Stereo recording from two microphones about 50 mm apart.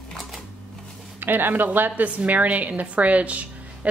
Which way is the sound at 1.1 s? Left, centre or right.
Right.